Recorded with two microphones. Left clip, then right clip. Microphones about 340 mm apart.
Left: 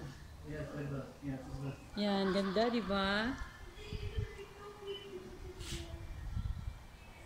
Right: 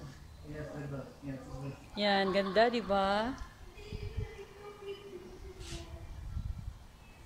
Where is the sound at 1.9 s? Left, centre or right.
Right.